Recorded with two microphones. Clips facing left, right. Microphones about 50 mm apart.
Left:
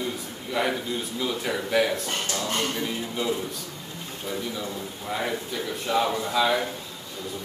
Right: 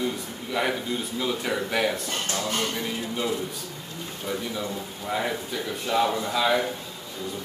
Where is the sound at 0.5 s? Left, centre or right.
Centre.